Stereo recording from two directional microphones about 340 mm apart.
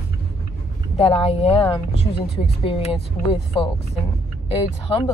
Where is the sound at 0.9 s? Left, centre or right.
Centre.